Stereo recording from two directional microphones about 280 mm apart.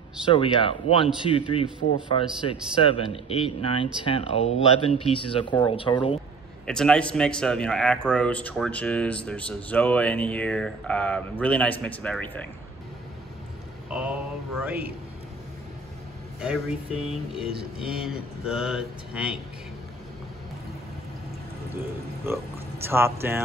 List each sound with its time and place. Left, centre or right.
0.3 s speech: centre
6.6 s speech: centre
13.8 s mantra: centre
16.3 s speech: centre
22.8 s speech: centre